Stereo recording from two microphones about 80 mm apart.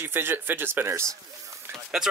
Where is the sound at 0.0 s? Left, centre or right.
Right.